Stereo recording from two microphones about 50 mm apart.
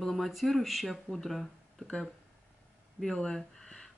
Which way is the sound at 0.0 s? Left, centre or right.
Centre.